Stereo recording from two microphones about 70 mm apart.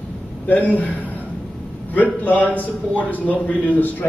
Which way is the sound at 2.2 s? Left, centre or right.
Left.